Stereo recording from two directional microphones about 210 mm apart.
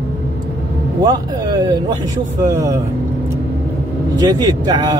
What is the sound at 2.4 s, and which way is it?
Speech, 15° right (ahead or behind).